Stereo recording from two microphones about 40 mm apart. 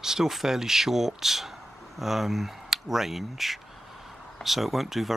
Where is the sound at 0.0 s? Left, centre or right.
Centre.